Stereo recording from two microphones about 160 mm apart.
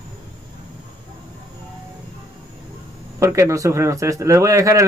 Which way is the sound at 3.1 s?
20° right (ahead or behind).